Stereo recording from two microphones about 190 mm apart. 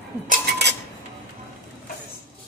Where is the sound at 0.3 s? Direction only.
60° right (ahead or behind).